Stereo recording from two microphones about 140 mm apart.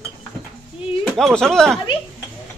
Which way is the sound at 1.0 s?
Centre (ahead or behind).